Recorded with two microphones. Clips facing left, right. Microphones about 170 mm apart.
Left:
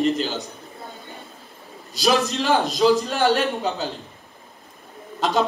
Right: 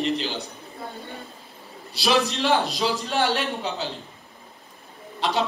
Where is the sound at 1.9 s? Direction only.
45° left (ahead or behind).